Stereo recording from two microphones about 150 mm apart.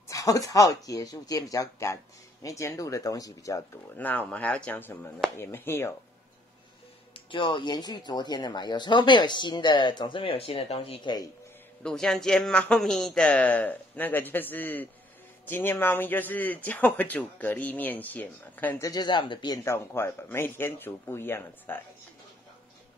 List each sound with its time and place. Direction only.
0.1 s speech: 25° left (ahead or behind)
7.2 s speech: 35° left (ahead or behind)
11.8 s speech: 5° left (ahead or behind)
18.9 s speech: 30° left (ahead or behind)
19.6 s speech: 15° left (ahead or behind)